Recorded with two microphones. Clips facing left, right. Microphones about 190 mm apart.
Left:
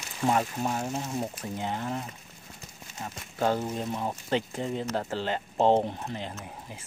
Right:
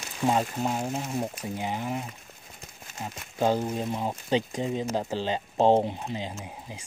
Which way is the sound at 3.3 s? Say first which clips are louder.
Right 2 dB; 15° right (ahead or behind).